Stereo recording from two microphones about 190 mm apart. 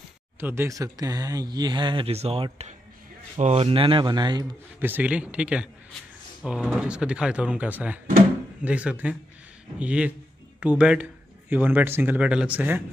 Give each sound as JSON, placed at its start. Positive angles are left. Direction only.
{"t": 0.4, "sound": "speech", "side_deg": -10}
{"t": 4.7, "sound": "speech", "side_deg": -10}